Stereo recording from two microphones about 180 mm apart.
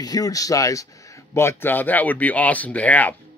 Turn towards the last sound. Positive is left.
turn(degrees=10)  # may be behind; listen again after turning